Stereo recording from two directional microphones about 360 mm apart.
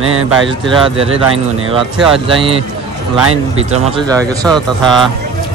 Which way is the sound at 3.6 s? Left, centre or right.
Centre.